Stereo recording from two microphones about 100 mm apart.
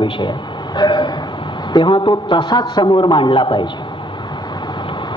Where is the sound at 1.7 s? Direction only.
55° left (ahead or behind).